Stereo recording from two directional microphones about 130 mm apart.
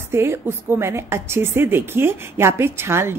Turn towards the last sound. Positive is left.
turn(degrees=-20)  # may be behind; listen again after turning